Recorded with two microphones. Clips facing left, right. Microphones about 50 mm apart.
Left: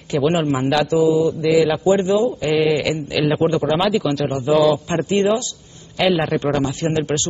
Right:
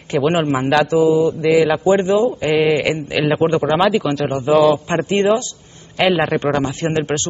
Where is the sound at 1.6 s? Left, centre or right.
Right.